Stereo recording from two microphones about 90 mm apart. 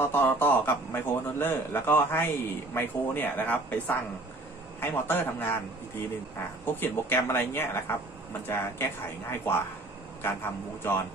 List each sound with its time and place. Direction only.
0.0 s speech: 25° left (ahead or behind)
6.6 s speech: 25° left (ahead or behind)